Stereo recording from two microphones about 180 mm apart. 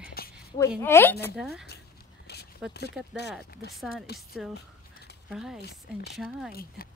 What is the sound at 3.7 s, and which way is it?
Speech, centre (ahead or behind).